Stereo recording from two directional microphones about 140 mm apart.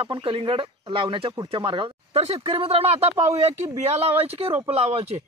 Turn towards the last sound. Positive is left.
turn(degrees=-50)  # may be behind; listen again after turning